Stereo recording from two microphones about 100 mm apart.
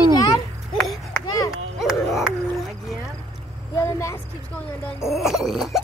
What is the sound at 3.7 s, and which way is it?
Speech, 25° left (ahead or behind).